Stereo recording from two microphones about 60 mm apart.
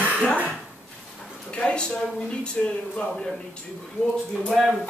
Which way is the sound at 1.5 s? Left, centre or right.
Centre.